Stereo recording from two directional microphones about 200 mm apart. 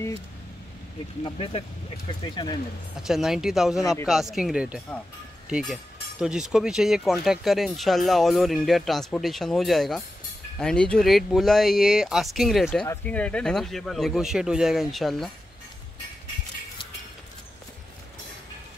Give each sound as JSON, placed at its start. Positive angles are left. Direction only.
{"t": 1.2, "sound": "speech", "side_deg": 25}
{"t": 3.0, "sound": "speech", "side_deg": 0}